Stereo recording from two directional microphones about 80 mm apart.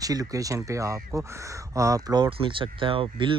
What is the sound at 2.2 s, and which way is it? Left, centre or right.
Speech, right.